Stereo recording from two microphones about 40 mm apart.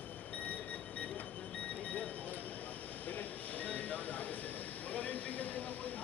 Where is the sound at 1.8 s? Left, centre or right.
Left.